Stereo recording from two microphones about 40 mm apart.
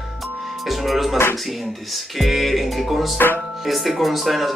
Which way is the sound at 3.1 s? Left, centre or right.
Left.